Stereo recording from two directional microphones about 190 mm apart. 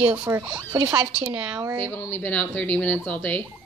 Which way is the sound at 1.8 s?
10° left (ahead or behind).